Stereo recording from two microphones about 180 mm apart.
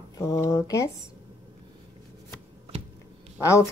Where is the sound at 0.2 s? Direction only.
15° left (ahead or behind).